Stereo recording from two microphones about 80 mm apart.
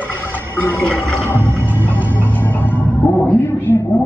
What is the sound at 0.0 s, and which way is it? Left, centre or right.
Music, left.